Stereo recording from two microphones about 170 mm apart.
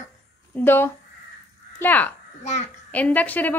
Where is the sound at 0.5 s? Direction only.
15° left (ahead or behind).